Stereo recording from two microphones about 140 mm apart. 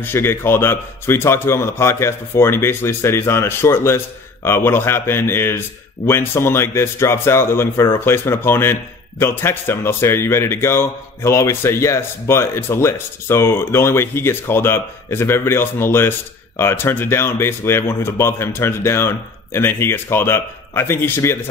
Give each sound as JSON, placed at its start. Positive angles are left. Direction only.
{"t": 0.0, "sound": "a man's voice", "side_deg": 15}